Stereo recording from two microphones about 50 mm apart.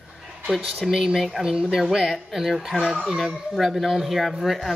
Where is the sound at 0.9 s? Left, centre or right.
Centre.